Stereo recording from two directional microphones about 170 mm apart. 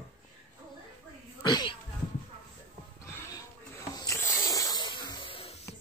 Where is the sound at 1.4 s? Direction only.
25° left (ahead or behind).